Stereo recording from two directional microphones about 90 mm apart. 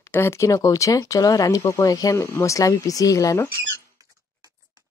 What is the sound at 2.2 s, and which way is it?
Speech, 25° left (ahead or behind).